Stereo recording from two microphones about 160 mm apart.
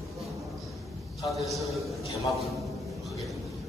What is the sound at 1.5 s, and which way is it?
A man's voice, centre (ahead or behind).